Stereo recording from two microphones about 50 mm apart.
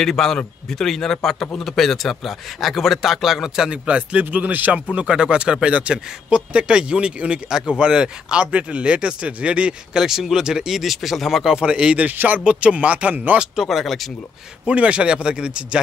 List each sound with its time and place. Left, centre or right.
0.0 s a man's voice: centre
3.7 s speech: right
4.9 s speech: centre
10.0 s a man's voice: centre
11.4 s speech: centre
12.1 s speech: right
12.4 s speech: right
13.7 s a man's voice: centre
14.7 s speech: right